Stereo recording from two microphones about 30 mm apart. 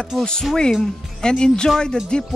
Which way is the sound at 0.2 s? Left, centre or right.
Left.